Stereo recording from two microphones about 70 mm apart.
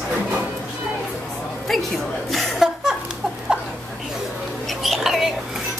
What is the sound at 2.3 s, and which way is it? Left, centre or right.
Chuckle, centre.